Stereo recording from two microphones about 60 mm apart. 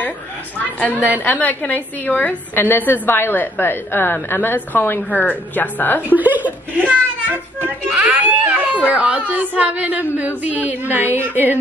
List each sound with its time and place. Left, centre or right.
1.2 s a woman's voice: left
6.1 s a child's voice: right
11.3 s a sound: right